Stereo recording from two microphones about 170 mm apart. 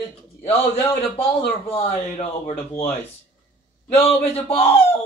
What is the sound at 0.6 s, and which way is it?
A man's voice, 35° left (ahead or behind).